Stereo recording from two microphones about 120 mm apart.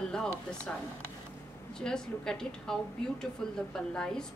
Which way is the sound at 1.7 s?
5° left (ahead or behind).